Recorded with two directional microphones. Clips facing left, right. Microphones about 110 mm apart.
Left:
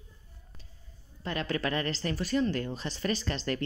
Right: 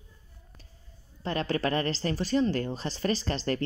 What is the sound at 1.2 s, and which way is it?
Speech, 35° right (ahead or behind).